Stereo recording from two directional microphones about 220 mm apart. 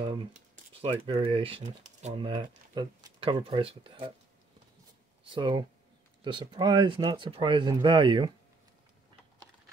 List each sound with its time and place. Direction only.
0.3 s a sound: 25° right (ahead or behind)
1.0 s speech: 20° right (ahead or behind)
5.2 s speech: 20° right (ahead or behind)